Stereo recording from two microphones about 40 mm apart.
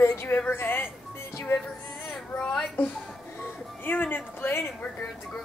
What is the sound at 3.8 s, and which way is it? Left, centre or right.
Speech, left.